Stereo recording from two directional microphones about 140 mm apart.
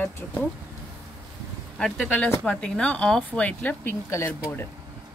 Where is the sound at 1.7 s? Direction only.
Centre (ahead or behind); by 4.6 s 20° left (ahead or behind).